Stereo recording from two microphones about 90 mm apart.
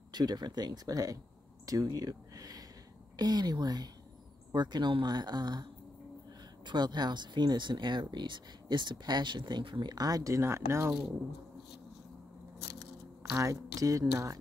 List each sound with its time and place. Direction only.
0.1 s speech: 50° right (ahead or behind); by 10.9 s 30° right (ahead or behind)
13.3 s speech: 40° right (ahead or behind)